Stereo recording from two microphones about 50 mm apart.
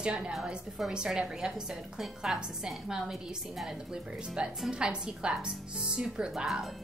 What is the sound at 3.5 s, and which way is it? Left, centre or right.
A woman's voice, centre.